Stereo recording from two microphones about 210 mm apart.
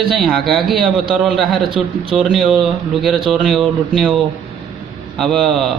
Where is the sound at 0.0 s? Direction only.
Centre (ahead or behind).